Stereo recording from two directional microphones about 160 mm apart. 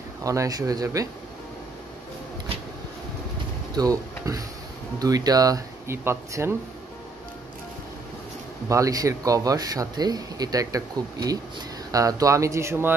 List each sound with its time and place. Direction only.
0.2 s speech: 20° right (ahead or behind)
3.7 s speech: 20° right (ahead or behind)
8.6 s speech: 20° right (ahead or behind)